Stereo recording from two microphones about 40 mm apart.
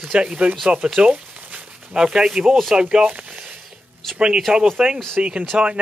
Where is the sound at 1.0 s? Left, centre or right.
Right.